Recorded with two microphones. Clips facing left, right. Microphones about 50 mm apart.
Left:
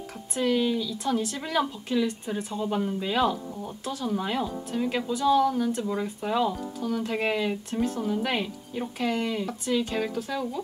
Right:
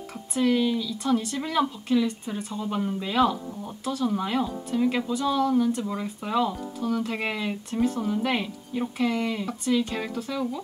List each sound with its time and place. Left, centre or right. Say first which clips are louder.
0.3 s speech: right 2 dB; centre